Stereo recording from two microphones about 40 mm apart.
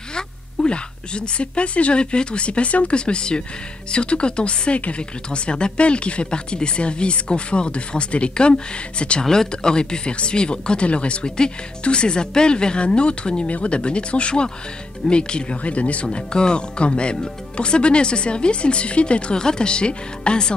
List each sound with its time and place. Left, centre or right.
0.1 s a woman's voice: left
9.2 s speech: centre; by 16.1 s left
16.1 s speech: left